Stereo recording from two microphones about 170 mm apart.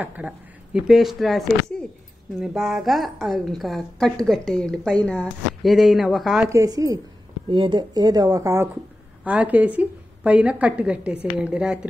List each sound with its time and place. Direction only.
0.0 s a woman's voice: 10° right (ahead or behind)
6.5 s a woman's voice: 20° right (ahead or behind)